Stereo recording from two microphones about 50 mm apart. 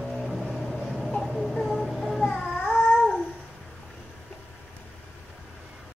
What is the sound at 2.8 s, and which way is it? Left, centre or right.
Babbling, centre.